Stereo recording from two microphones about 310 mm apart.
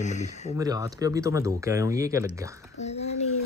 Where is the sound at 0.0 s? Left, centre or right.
Left.